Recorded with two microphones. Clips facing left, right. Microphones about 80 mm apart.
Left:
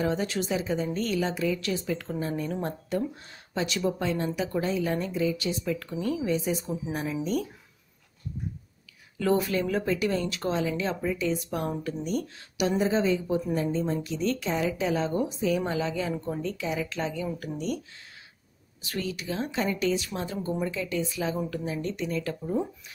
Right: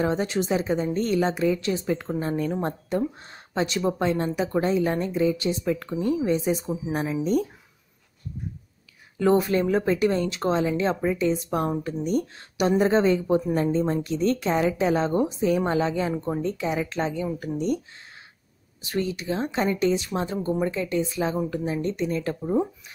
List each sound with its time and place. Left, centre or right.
0.0 s a woman's voice: right
9.2 s a woman's voice: right
12.8 s a woman's voice: right
18.9 s a woman's voice: right